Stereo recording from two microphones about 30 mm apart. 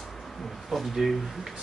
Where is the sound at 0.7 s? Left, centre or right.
Centre.